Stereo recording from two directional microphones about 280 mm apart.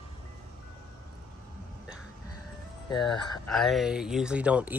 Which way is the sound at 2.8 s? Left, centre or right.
Centre.